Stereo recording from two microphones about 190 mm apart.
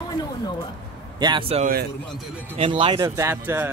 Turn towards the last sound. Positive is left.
turn(degrees=-10)  # may be behind; listen again after turning